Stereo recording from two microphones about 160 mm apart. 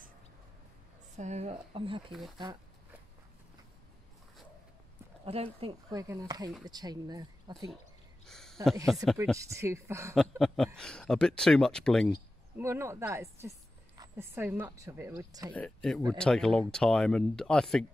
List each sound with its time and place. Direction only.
1.1 s speech: 45° right (ahead or behind)
5.2 s speech: 35° right (ahead or behind)
5.9 s speech: 20° right (ahead or behind)
8.3 s a sound: 5° left (ahead or behind)
8.9 s speech: centre (ahead or behind)
9.4 s speech: 20° right (ahead or behind)
10.4 s speech: centre (ahead or behind)
12.5 s a woman's voice: 15° right (ahead or behind)
15.5 s speech: 5° left (ahead or behind)